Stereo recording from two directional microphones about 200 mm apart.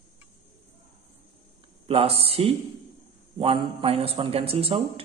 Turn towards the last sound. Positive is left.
turn(degrees=-30)  # may be behind; listen again after turning